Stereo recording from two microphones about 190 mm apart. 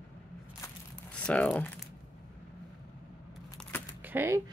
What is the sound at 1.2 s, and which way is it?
Speech, 5° left (ahead or behind).